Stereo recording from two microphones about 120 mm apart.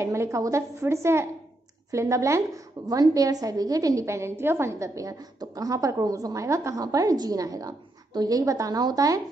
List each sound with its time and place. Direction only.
0.0 s a woman's voice: 25° right (ahead or behind)